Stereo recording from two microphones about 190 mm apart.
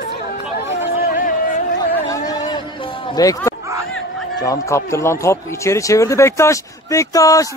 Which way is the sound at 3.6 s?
15° right (ahead or behind).